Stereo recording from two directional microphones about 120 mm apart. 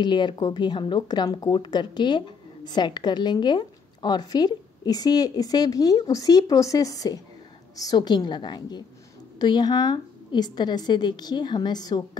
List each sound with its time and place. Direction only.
0.0 s speech: 40° left (ahead or behind)